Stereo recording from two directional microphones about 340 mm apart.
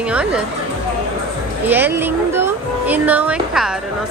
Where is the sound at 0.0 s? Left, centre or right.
Centre.